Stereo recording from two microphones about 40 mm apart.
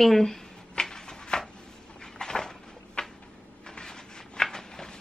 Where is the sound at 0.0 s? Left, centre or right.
Centre.